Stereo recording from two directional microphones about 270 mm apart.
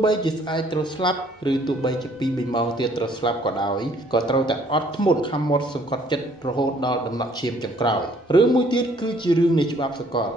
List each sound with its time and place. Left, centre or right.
0.0 s speech: centre